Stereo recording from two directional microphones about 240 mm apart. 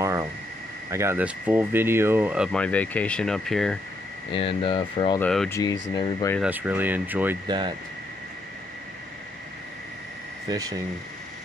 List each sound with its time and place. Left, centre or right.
0.0 s a sound: centre
0.8 s speech: centre
4.3 s speech: left
5.2 s speech: centre
5.6 s speech: centre
6.3 s speech: centre
7.4 s speech: centre
10.5 s speech: centre